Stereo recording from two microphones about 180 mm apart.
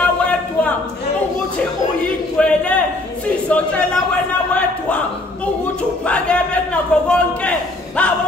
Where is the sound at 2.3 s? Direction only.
5° left (ahead or behind).